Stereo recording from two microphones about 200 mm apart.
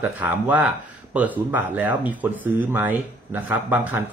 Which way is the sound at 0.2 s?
10° right (ahead or behind).